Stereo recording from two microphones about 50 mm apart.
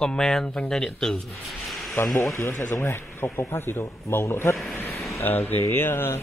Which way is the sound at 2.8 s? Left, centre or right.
Left.